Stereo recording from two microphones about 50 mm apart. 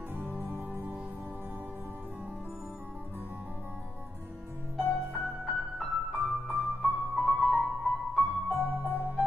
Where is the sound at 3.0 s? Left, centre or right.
Right.